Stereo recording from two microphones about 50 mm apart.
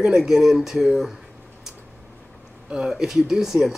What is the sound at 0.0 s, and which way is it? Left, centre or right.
Speech, centre.